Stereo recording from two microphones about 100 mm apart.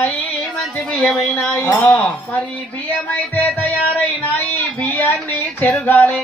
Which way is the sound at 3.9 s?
20° left (ahead or behind).